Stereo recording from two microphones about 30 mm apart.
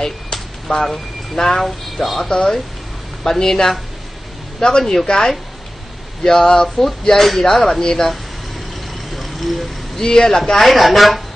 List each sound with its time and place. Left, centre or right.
0.0 s a sound: centre
1.3 s speech: centre
2.3 s speech: left
3.3 s speech: centre
4.6 s speech: left
9.1 s a sound: centre
10.0 s speech: left
10.6 s speech: centre